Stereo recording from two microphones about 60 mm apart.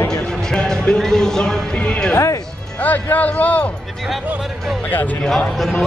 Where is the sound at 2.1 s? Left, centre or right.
Left.